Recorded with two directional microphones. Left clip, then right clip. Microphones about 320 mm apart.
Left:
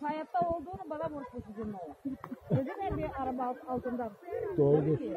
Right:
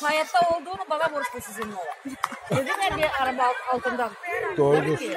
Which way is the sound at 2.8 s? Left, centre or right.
Right.